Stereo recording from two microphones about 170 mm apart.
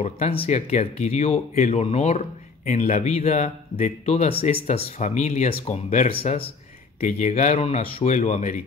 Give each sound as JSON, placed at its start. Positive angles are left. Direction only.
{"t": 0.0, "sound": "speech", "side_deg": 35}
{"t": 2.7, "sound": "speech", "side_deg": 50}